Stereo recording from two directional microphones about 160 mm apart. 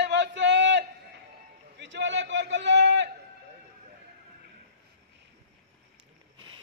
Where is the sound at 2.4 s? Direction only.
90° right.